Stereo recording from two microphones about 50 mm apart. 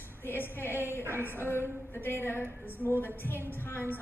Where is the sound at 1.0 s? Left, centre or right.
Right.